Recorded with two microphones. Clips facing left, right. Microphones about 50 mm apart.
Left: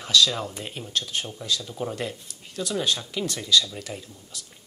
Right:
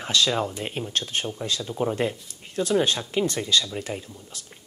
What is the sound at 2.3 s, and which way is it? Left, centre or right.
Speech, right.